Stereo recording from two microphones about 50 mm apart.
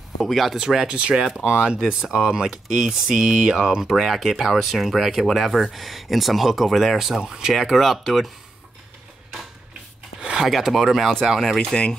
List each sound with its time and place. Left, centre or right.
0.2 s speech: centre
0.9 s speech: right; by 8.3 s centre
10.4 s speech: centre
11.5 s speech: centre